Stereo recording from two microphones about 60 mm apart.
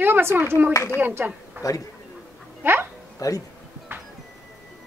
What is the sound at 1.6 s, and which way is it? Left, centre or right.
Speech, left.